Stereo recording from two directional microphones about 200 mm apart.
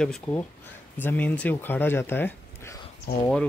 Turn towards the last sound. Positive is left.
turn(degrees=50)  # may be behind; listen again after turning